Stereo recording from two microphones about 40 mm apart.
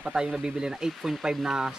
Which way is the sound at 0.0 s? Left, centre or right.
Right.